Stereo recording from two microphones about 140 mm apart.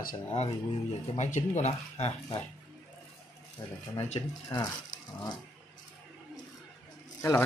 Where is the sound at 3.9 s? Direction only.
50° left (ahead or behind).